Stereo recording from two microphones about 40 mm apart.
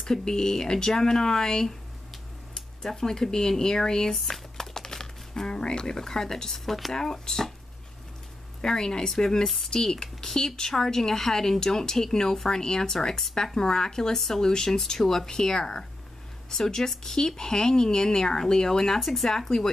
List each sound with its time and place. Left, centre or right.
0.0 s speech: centre
3.0 s speech: centre
8.5 s speech: centre
18.9 s speech: centre
19.3 s speech: centre